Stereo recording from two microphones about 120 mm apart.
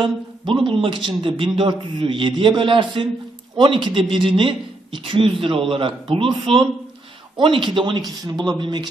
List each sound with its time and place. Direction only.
0.0 s speech: 45° right (ahead or behind)